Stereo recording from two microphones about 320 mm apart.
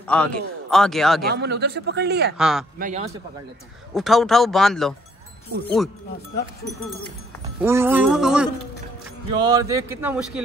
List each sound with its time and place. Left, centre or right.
0.0 s a man's voice: centre
1.2 s a man's voice: right
2.3 s a man's voice: centre
2.8 s a man's voice: right
3.9 s a man's voice: centre
7.6 s a man's voice: centre
9.3 s speech: centre